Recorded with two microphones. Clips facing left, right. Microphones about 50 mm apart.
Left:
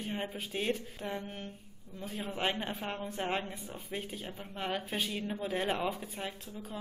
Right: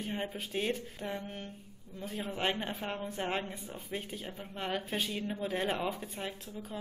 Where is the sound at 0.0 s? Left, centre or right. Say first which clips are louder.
Even; centre.